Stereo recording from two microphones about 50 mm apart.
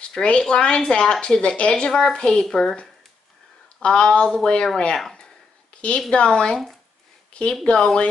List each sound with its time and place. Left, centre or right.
0.0 s a woman's voice: centre
5.1 s a sound: centre
7.3 s a woman's voice: left